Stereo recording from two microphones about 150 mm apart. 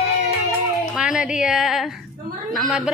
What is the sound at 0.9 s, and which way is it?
A woman's voice, 5° right (ahead or behind).